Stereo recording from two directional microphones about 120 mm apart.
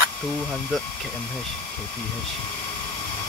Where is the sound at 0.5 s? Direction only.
5° left (ahead or behind).